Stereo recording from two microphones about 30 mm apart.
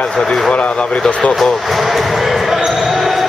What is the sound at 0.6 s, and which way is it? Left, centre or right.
Speech, left.